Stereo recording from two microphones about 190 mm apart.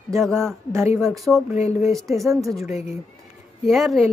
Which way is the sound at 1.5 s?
35° left (ahead or behind).